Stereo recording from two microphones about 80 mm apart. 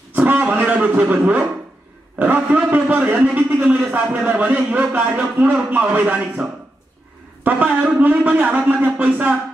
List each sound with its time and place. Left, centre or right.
0.2 s a sound: centre
2.1 s a man's voice: right
7.4 s a man's voice: centre